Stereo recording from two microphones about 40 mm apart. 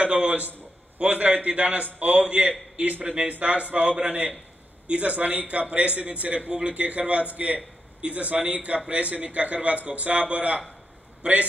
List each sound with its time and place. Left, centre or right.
0.0 s a man's voice: right
8.5 s a man's voice: right